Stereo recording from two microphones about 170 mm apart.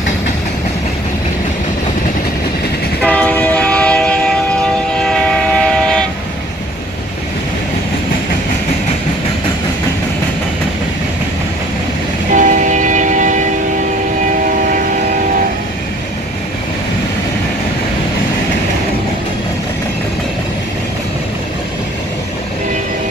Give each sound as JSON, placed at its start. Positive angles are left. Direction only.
{"t": 3.0, "sound": "train", "side_deg": 5}
{"t": 12.3, "sound": "train", "side_deg": -50}